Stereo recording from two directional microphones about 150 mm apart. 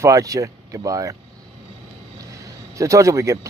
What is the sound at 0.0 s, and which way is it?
Speech, 20° right (ahead or behind).